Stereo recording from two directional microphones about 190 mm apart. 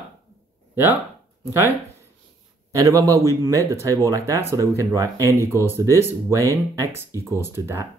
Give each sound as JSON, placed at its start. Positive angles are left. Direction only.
{"t": 1.4, "sound": "speech", "side_deg": -15}
{"t": 2.7, "sound": "speech", "side_deg": -15}